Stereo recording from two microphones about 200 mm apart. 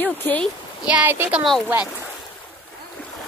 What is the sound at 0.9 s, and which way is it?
Speech, 10° right (ahead or behind).